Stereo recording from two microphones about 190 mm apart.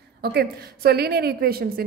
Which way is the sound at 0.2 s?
55° right (ahead or behind).